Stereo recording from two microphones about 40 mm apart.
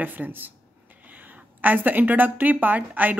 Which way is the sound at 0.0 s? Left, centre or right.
Right.